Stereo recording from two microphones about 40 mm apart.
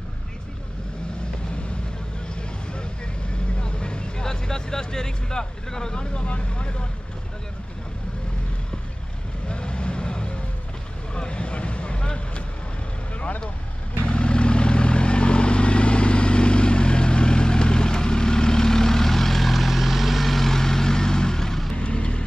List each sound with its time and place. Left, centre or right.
3.6 s vehicle: left
9.5 s vehicle: left
14.0 s vehicle: left; by 21.7 s centre
21.7 s vehicle: left